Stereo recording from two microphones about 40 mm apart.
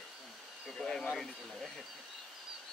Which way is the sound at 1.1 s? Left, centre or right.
Centre.